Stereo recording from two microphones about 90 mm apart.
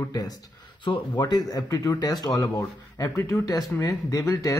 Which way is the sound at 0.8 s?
55° left (ahead or behind).